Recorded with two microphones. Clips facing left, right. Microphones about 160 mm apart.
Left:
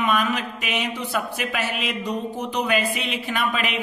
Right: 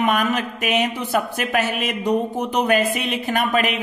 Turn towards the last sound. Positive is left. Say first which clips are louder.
# right 5 dB
turn(degrees=-45)  # may be behind; listen again after turning